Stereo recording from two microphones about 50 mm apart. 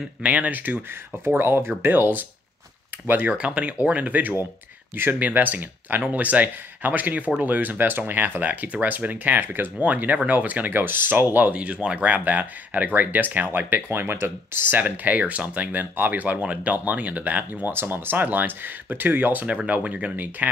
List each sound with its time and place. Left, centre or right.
0.2 s speech: right
1.2 s speech: right
1.9 s speech: right
9.8 s speech: right
19.4 s speech: right